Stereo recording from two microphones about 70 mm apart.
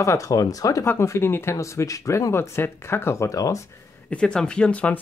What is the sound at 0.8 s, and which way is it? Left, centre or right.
Speech, left.